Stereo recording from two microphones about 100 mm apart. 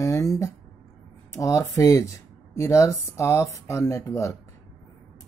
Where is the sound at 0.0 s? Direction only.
35° left (ahead or behind).